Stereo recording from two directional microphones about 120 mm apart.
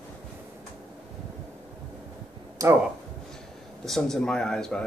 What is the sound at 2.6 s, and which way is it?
Speech, 30° right (ahead or behind).